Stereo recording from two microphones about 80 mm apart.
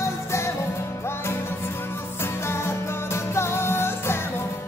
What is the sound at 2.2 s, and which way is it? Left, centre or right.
Music, left.